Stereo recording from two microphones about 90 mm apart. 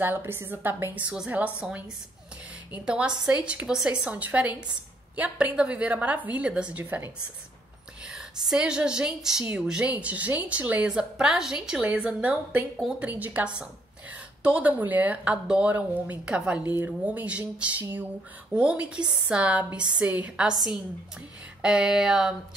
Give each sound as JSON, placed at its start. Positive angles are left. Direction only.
{"t": 0.0, "sound": "a woman's voice", "side_deg": -25}
{"t": 1.0, "sound": "a woman's voice", "side_deg": -10}
{"t": 8.5, "sound": "a woman's voice", "side_deg": -10}
{"t": 20.5, "sound": "a sound", "side_deg": 0}